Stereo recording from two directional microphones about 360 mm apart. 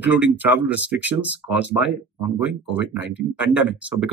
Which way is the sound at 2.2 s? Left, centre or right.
Centre.